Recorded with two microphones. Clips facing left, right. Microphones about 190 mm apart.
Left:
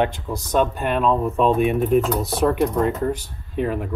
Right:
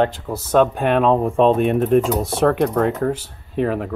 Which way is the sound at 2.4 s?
65° right (ahead or behind).